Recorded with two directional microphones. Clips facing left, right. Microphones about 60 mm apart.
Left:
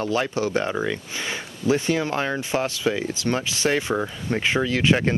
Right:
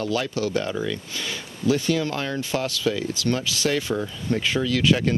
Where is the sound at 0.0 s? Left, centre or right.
Left.